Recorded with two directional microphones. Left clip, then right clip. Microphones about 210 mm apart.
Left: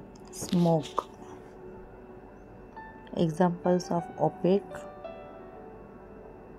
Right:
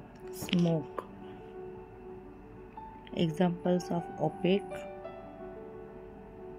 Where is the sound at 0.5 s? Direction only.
30° left (ahead or behind).